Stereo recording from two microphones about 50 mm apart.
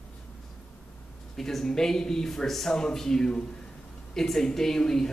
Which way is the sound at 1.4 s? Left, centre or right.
Centre.